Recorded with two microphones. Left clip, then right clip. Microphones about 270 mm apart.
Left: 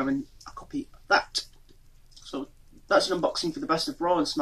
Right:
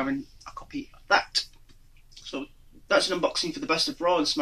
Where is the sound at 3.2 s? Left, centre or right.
Centre.